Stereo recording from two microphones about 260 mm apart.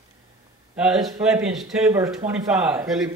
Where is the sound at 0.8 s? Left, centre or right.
Centre.